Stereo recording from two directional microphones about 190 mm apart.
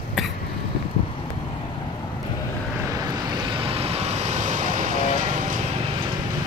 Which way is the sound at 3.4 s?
30° right (ahead or behind).